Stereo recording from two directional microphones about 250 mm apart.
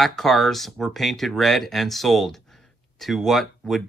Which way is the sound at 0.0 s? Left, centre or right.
Centre.